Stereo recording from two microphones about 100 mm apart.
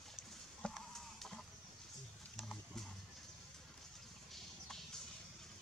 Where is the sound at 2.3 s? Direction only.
5° left (ahead or behind).